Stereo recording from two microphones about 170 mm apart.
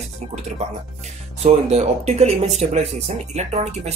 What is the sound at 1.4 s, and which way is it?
Speech, 40° right (ahead or behind).